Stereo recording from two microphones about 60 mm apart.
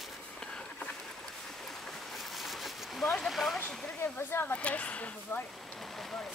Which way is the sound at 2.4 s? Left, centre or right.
Centre.